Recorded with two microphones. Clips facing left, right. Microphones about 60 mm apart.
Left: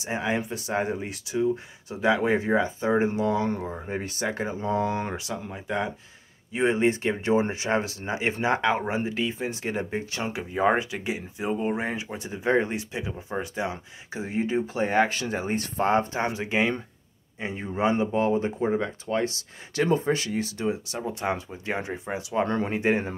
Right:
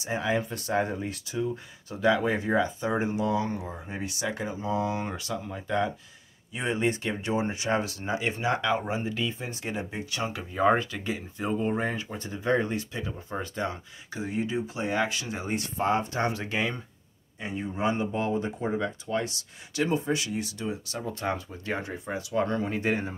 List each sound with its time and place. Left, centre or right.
0.0 s speech: left
5.1 s speech: left
6.5 s speech: left
10.2 s speech: left
14.1 s speech: left
16.1 s speech: left